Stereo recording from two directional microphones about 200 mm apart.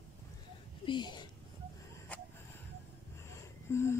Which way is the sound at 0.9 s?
20° left (ahead or behind).